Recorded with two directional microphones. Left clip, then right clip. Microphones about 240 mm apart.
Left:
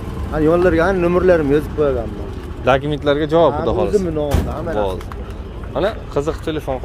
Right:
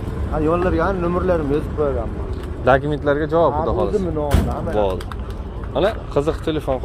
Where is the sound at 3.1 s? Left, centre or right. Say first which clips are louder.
Left 3 dB; left.